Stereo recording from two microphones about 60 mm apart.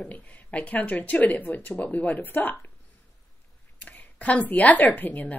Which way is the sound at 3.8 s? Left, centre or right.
Left.